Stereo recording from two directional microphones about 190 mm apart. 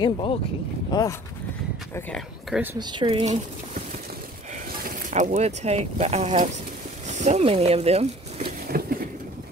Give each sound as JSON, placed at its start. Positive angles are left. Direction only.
{"t": 0.0, "sound": "speech", "side_deg": 25}
{"t": 2.1, "sound": "speech", "side_deg": -5}
{"t": 2.7, "sound": "speech", "side_deg": -25}
{"t": 4.8, "sound": "speech", "side_deg": -40}
{"t": 8.5, "sound": "a sound", "side_deg": -50}